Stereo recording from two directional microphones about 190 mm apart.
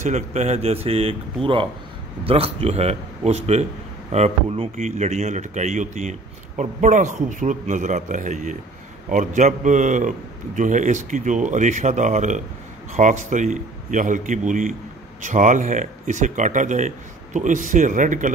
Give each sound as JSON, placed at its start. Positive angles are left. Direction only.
{"t": 0.0, "sound": "a man's voice", "side_deg": -40}